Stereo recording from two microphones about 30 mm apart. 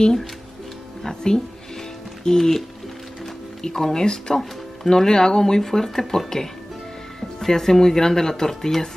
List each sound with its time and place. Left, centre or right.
1.0 s speech: centre
3.6 s speech: centre